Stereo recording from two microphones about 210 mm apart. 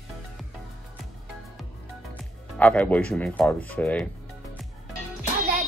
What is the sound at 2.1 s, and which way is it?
Speech, 5° left (ahead or behind).